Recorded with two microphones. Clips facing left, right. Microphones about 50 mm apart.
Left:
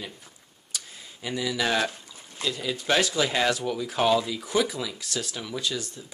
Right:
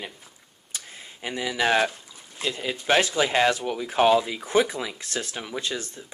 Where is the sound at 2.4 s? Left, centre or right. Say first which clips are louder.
Right 1 dB; right.